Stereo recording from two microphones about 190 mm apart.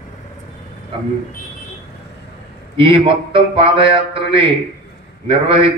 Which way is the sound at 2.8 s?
25° right (ahead or behind).